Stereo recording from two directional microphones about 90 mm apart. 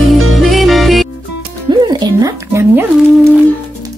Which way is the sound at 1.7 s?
50° right (ahead or behind).